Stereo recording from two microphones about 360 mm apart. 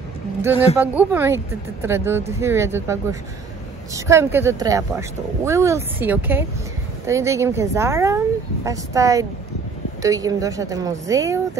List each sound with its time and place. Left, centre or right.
0.7 s speech: centre